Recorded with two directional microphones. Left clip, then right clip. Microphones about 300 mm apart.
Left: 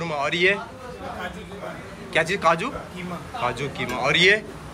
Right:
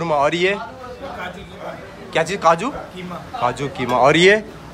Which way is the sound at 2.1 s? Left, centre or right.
Centre.